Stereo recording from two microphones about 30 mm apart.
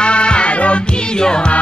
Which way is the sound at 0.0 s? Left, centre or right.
Left.